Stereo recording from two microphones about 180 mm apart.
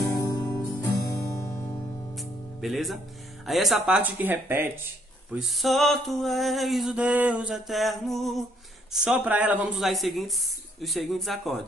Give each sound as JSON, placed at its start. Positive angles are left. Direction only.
{"t": 0.0, "sound": "music", "side_deg": 20}
{"t": 2.1, "sound": "music", "side_deg": 0}
{"t": 3.4, "sound": "speech", "side_deg": 0}
{"t": 5.3, "sound": "music", "side_deg": 0}